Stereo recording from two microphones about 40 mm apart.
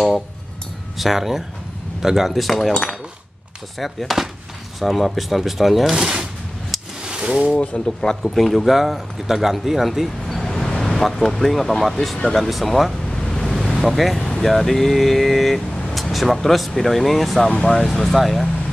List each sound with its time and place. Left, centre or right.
0.9 s a man's voice: centre
2.3 s speech: centre
2.7 s speech: centre
3.8 s speech: centre
5.9 s speech: centre
7.5 s speech: left
8.2 s speech: centre
12.4 s speech: centre
13.2 s waves: centre
13.8 s speech: centre